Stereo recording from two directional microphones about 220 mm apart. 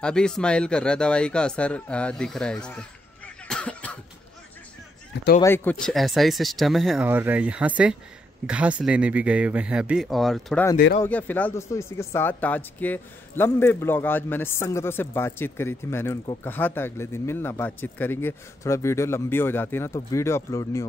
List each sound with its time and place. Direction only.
0.0 s speech: 5° left (ahead or behind)
3.4 s cough: 5° left (ahead or behind)
5.1 s speech: 50° left (ahead or behind)
5.4 s speech: 10° left (ahead or behind)